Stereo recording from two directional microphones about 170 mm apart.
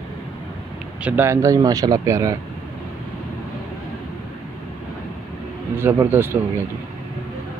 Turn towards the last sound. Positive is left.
turn(degrees=-15)  # may be behind; listen again after turning